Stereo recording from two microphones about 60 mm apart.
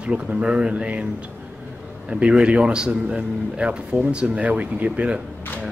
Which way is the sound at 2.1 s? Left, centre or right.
Centre.